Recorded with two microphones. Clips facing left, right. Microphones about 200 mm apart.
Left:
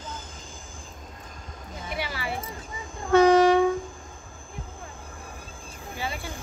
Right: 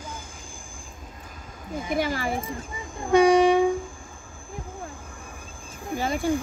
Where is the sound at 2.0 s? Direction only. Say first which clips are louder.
Right 6 dB; 45° right (ahead or behind).